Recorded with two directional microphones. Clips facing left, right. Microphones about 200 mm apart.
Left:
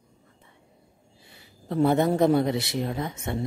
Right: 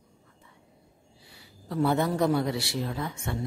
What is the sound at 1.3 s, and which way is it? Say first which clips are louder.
A man's voice: left 4 dB; 25° left (ahead or behind).